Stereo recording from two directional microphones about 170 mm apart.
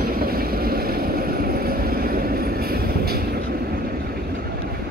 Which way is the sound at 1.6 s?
60° right (ahead or behind).